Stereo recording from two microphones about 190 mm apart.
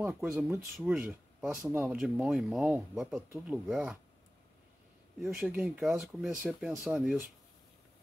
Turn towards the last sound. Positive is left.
turn(degrees=-5)  # may be behind; listen again after turning